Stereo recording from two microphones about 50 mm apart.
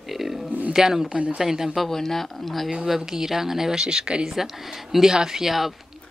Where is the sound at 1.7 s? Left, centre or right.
Centre.